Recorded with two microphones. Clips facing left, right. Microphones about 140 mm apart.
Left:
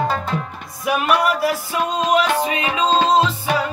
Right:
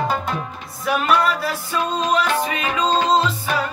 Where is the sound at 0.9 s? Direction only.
10° left (ahead or behind).